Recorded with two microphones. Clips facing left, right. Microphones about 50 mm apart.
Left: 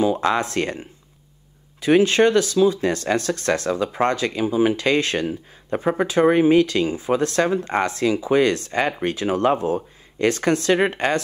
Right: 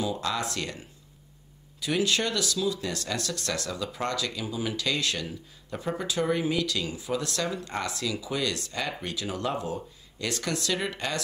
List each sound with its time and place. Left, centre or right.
0.0 s speech: left